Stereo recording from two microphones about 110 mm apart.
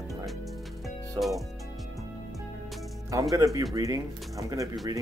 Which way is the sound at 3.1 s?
30° right (ahead or behind).